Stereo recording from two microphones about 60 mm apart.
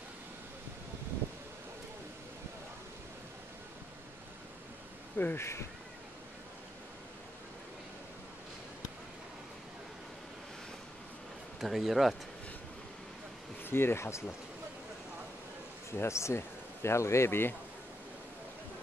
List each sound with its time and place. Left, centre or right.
5.1 s speech: left
5.4 s speech: left
11.6 s speech: centre
13.7 s speech: left
15.9 s speech: left